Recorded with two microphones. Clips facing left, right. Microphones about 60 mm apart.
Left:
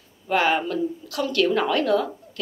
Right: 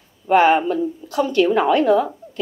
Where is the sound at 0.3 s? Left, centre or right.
Right.